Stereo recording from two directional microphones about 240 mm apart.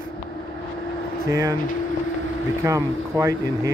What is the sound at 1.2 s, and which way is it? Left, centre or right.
Speech, centre.